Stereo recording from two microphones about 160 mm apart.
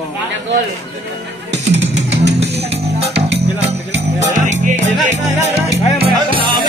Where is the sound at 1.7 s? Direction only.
90° right.